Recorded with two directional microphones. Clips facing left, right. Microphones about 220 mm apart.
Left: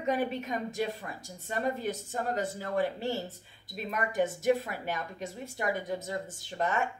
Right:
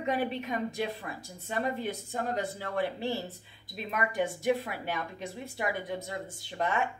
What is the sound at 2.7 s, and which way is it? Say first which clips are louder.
Speech: left 1 dB; 45° left (ahead or behind).